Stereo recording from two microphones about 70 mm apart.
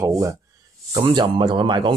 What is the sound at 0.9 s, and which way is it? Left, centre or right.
Speech, right.